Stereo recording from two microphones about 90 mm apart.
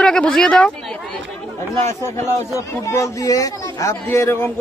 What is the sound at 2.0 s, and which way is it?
Speech, 30° left (ahead or behind).